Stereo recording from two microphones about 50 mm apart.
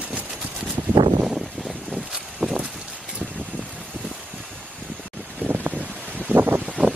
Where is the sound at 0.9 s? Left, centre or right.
Right.